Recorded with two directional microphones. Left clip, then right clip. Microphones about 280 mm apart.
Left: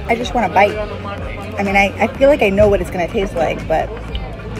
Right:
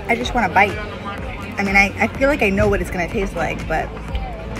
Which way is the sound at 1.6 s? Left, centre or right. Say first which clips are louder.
Left 1 dB; centre.